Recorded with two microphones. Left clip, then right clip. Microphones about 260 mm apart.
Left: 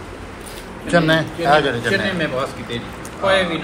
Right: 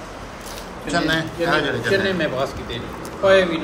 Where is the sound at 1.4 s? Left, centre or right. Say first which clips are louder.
Left 5 dB; centre.